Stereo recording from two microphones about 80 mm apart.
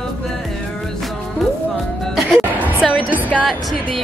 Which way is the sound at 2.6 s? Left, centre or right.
Centre.